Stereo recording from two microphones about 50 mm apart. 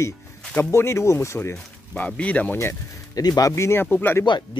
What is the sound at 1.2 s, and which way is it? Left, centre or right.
Speech, left.